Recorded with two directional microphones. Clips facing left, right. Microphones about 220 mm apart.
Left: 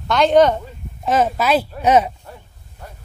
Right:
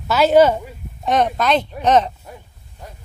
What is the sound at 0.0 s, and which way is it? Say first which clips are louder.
Speech: right 1 dB; 5° right (ahead or behind).